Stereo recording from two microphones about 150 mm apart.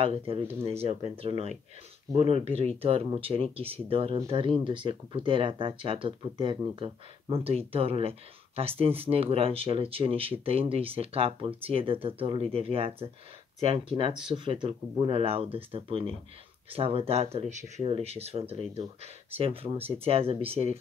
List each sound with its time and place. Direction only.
1.1 s speech: 40° right (ahead or behind)